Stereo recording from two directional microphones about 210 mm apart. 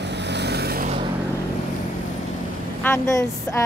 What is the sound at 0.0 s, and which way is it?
Vehicle, 55° right (ahead or behind).